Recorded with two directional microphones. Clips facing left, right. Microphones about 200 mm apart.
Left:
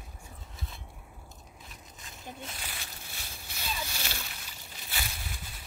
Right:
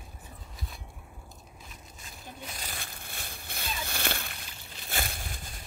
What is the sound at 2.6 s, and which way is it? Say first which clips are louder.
Slosh: right 2 dB; 55° right (ahead or behind).